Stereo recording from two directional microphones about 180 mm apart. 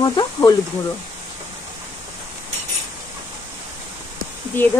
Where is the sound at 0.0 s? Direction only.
20° left (ahead or behind).